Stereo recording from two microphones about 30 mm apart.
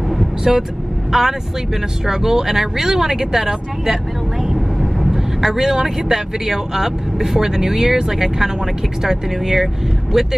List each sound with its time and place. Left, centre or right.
0.4 s speech: centre
4.6 s vehicle: centre
5.5 s speech: centre